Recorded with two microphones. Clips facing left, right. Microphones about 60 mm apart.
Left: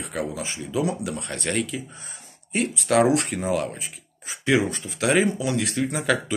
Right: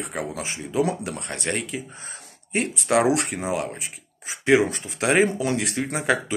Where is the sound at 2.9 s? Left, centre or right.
Right.